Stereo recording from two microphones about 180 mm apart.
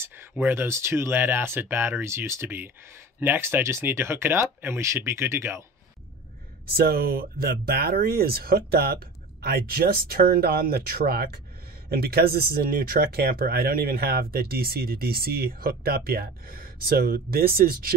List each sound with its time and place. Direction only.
0.0 s speech: 10° right (ahead or behind)
6.7 s speech: 60° right (ahead or behind)